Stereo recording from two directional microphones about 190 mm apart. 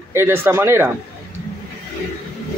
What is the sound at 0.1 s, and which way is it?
Speech, 15° right (ahead or behind).